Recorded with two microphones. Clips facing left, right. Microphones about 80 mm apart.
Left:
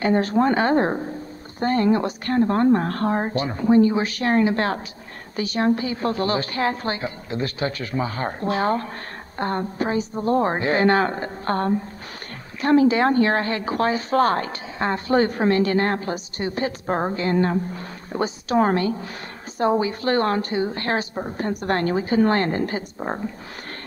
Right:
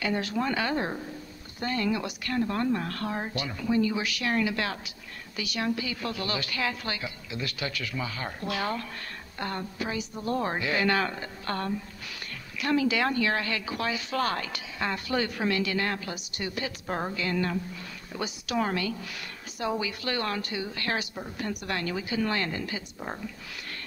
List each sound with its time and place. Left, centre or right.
0.0 s speech: left